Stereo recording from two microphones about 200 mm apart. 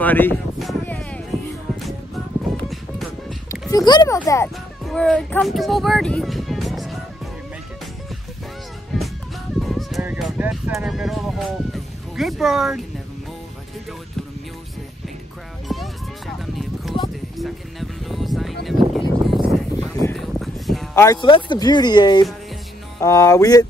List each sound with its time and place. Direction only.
0.0 s music: 10° left (ahead or behind)
2.7 s music: centre (ahead or behind)
3.7 s music: 20° left (ahead or behind)
4.8 s speech: 5° left (ahead or behind)
8.9 s music: centre (ahead or behind)
9.6 s a sound: centre (ahead or behind)
15.7 s music: centre (ahead or behind)
18.7 s a sound: centre (ahead or behind)
19.9 s a sound: 15° left (ahead or behind)
20.2 s a sound: centre (ahead or behind)
20.9 s speech: 15° left (ahead or behind)
22.9 s music: 15° left (ahead or behind)